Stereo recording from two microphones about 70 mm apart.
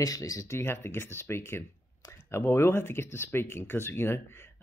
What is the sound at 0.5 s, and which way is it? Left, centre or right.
Speech, left.